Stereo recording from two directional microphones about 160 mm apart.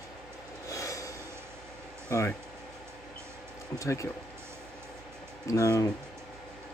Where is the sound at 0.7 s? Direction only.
20° left (ahead or behind).